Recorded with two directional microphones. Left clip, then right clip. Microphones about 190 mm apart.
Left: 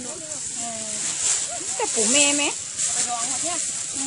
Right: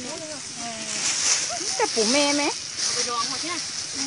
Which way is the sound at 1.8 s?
10° right (ahead or behind).